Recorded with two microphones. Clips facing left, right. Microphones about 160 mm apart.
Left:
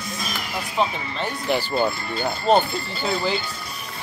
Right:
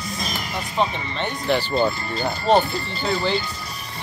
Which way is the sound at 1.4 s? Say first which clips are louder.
Right 2 dB; 5° left (ahead or behind).